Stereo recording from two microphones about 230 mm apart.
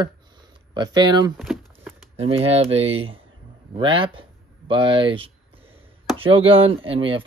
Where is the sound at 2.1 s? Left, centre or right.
Right.